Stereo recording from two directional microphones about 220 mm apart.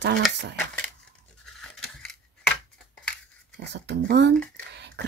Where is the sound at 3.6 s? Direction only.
50° right (ahead or behind).